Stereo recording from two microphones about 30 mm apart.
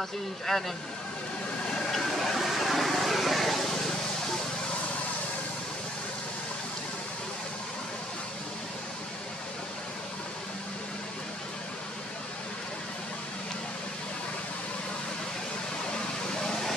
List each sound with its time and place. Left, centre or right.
0.5 s speech: centre
2.0 s vehicle: centre
16.4 s vehicle: centre